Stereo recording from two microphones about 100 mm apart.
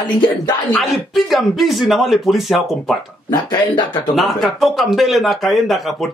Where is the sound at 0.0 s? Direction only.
50° left (ahead or behind).